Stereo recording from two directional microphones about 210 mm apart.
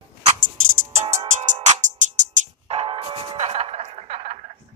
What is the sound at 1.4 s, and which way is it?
Music, 35° right (ahead or behind).